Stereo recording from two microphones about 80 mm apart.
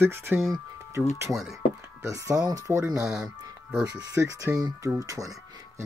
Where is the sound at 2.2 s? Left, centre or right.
Right.